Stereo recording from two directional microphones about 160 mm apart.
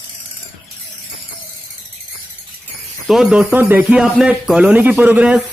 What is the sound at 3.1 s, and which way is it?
Speech, 5° right (ahead or behind).